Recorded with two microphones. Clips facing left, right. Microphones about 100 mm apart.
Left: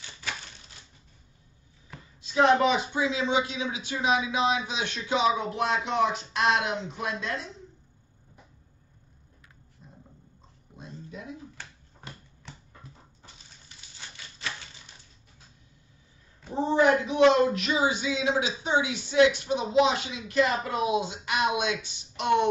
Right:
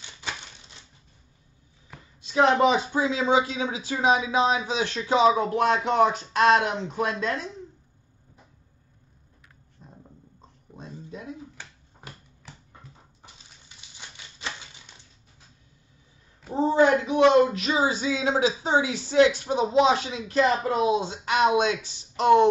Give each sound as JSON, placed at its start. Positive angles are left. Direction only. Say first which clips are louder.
{"t": 2.3, "sound": "speech", "louder": "right 2 dB", "side_deg": -30}
{"t": 13.9, "sound": "typewriter", "louder": "even", "side_deg": -20}
{"t": 16.5, "sound": "a sound", "louder": "right 2 dB", "side_deg": -25}
{"t": 17.2, "sound": "speech", "louder": "right 2 dB", "side_deg": -30}